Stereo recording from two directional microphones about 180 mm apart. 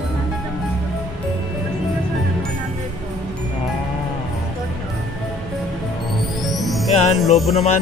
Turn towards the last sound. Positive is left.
turn(degrees=0)  # may be behind; listen again after turning